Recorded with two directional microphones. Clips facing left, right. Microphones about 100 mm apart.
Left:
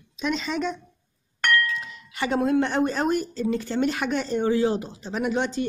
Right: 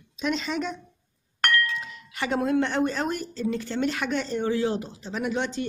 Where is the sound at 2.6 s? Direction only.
10° left (ahead or behind).